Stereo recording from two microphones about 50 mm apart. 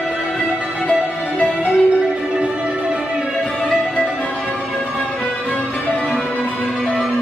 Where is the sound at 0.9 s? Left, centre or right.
Left.